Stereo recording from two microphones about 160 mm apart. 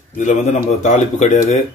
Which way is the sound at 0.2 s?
50° left (ahead or behind).